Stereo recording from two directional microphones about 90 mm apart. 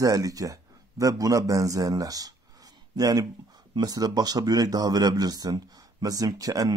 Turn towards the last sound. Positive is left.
turn(degrees=-40)  # may be behind; listen again after turning